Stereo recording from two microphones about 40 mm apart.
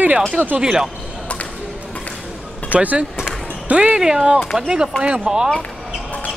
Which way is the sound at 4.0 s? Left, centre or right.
Centre.